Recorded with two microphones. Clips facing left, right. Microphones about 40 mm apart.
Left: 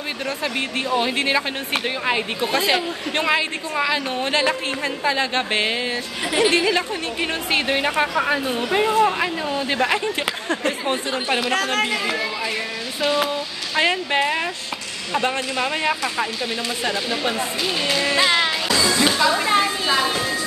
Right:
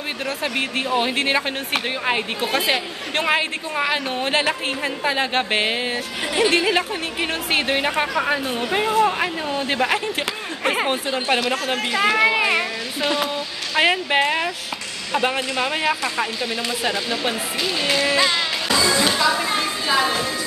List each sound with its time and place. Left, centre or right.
0.4 s speech: centre
4.1 s speech: centre
6.3 s a woman's voice: centre
6.7 s a woman's voice: centre
11.6 s speech: centre
12.2 s speech: right
13.7 s a woman's voice: centre
17.8 s a woman's voice: centre
18.7 s music: centre
18.9 s music: centre
19.4 s a sound: centre
19.9 s a woman's voice: centre